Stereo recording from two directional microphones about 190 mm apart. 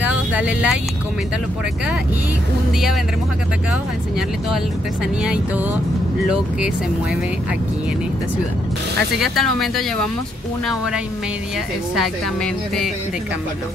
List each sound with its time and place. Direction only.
0.0 s speech: 5° right (ahead or behind)
5.2 s speech: 5° right (ahead or behind)
9.2 s speech: centre (ahead or behind)